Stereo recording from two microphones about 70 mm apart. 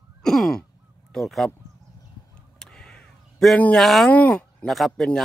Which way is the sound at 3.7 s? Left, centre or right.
Centre.